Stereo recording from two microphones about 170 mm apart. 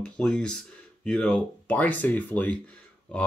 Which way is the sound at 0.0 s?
5° left (ahead or behind).